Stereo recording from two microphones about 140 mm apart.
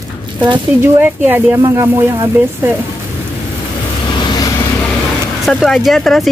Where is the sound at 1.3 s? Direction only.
10° right (ahead or behind).